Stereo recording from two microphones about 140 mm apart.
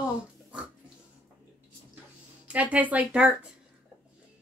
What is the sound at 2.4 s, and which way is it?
Speech, 10° right (ahead or behind).